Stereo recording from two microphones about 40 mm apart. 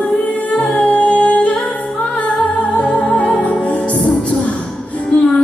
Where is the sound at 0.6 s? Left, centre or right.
Left.